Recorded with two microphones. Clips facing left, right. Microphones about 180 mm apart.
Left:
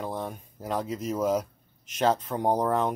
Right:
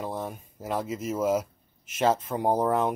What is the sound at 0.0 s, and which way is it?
Speech, 5° right (ahead or behind).